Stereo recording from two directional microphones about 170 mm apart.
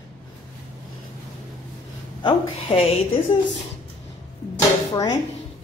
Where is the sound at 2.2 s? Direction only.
35° left (ahead or behind).